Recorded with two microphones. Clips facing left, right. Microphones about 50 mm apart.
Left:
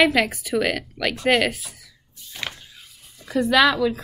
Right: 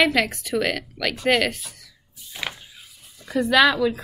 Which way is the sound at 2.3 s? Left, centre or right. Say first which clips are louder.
Right 1 dB; centre.